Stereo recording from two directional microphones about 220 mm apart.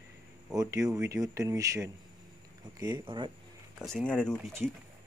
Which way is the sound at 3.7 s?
Centre (ahead or behind).